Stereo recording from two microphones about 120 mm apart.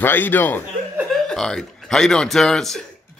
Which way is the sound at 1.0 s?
5° left (ahead or behind).